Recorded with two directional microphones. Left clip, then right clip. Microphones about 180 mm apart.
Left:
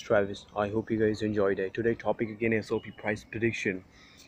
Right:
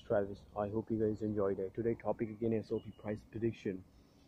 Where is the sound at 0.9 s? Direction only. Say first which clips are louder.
Left 8 dB; 30° left (ahead or behind).